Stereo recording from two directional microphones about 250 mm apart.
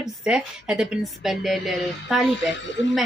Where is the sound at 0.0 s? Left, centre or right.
Centre.